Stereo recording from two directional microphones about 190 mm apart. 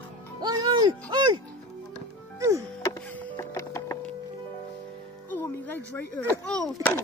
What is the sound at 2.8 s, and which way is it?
Music, 15° left (ahead or behind).